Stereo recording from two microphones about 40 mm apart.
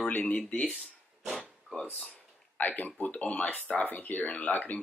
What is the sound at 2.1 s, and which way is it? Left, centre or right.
Speech, left.